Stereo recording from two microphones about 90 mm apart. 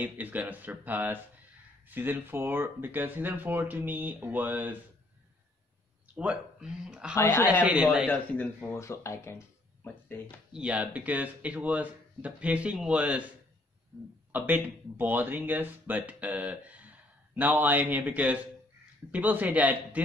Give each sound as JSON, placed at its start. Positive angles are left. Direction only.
{"t": 0.0, "sound": "speech", "side_deg": -20}
{"t": 6.1, "sound": "speech", "side_deg": -10}
{"t": 7.2, "sound": "speech", "side_deg": 25}
{"t": 7.6, "sound": "speech", "side_deg": -15}
{"t": 8.1, "sound": "speech", "side_deg": 15}
{"t": 8.7, "sound": "speech", "side_deg": 30}
{"t": 10.5, "sound": "speech", "side_deg": -10}
{"t": 14.3, "sound": "speech", "side_deg": -20}